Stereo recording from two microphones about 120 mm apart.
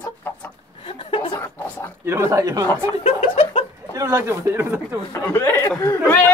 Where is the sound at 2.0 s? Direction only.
20° right (ahead or behind).